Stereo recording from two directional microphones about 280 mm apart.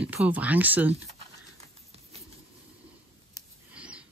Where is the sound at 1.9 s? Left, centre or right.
Right.